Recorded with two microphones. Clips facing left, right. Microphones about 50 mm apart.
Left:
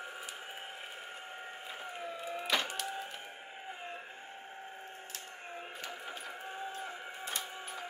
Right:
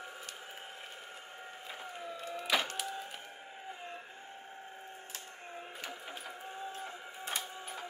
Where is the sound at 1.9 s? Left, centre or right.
Left.